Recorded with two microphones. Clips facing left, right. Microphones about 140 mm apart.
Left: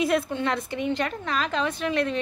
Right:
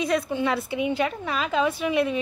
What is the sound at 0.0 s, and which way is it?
A woman's voice, centre (ahead or behind).